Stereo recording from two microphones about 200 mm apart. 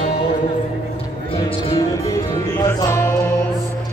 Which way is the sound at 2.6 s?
15° left (ahead or behind).